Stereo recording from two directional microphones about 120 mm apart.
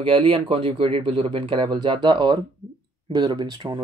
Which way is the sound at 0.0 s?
45° right (ahead or behind).